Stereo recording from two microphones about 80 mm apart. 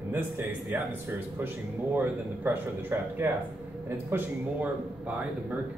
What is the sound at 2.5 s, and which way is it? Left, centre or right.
Speech, right.